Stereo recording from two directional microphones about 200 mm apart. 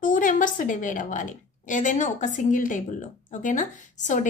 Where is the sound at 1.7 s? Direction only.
40° left (ahead or behind).